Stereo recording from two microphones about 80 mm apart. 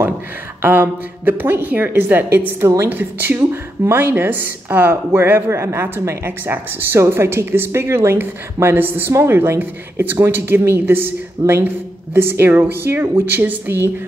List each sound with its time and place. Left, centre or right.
0.6 s a woman's voice: right